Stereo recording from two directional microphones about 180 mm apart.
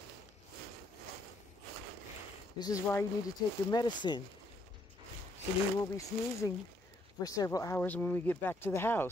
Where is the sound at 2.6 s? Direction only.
15° left (ahead or behind).